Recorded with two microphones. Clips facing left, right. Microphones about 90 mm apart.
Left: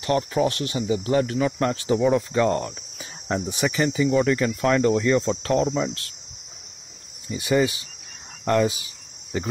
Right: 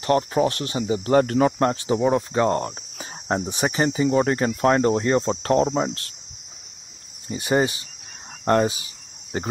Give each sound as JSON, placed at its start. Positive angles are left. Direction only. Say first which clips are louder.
{"t": 0.0, "sound": "cricket", "louder": "right 2 dB", "side_deg": -35}
{"t": 1.1, "sound": "speech", "louder": "right 5 dB", "side_deg": -50}
{"t": 1.6, "sound": "cricket", "louder": "right 1 dB", "side_deg": -30}
{"t": 7.2, "sound": "cricket", "louder": "even", "side_deg": -40}